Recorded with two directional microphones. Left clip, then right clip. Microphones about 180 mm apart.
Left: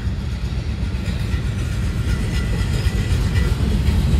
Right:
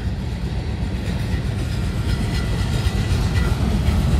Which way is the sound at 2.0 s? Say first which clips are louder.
Right 1 dB; 40° right (ahead or behind).